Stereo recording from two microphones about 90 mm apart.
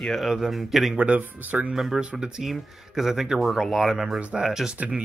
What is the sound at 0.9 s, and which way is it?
Speech, 15° right (ahead or behind).